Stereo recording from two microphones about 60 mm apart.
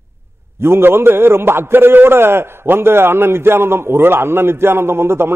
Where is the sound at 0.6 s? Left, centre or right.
Right.